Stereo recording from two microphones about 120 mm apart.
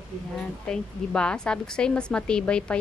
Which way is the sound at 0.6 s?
5° left (ahead or behind).